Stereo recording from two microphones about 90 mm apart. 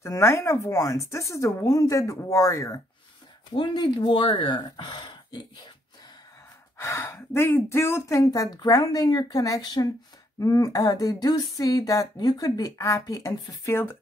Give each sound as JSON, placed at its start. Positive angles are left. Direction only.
{"t": 0.0, "sound": "speech", "side_deg": 30}
{"t": 3.5, "sound": "speech", "side_deg": 60}
{"t": 6.8, "sound": "speech", "side_deg": 30}